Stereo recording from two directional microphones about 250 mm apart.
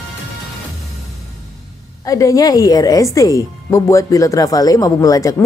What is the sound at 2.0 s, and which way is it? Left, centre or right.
Speech, centre.